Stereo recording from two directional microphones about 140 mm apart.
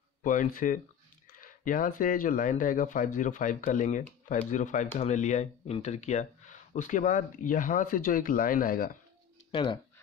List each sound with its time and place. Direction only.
0.2 s speech: 70° left (ahead or behind); by 8.9 s 90° left
9.5 s speech: 40° left (ahead or behind)